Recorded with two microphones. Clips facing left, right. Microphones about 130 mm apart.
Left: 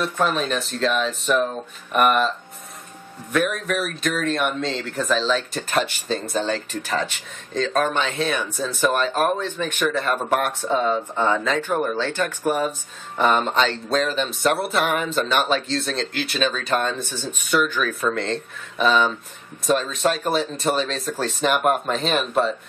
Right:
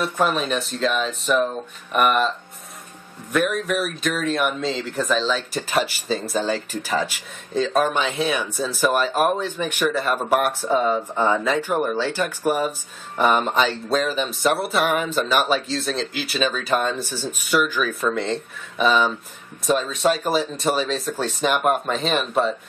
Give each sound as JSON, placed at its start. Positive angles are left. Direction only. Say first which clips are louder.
{"t": 0.0, "sound": "speech", "louder": "right 1 dB", "side_deg": -5}
{"t": 3.3, "sound": "speech", "louder": "right 1 dB", "side_deg": 0}